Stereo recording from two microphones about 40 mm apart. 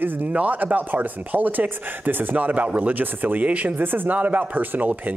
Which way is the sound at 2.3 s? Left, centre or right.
Right.